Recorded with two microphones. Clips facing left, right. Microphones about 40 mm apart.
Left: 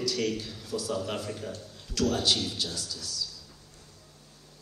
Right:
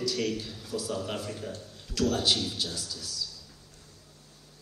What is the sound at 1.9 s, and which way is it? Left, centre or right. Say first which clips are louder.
A man's voice: even; centre.